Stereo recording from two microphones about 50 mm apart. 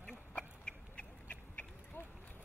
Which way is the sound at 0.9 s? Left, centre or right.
Left.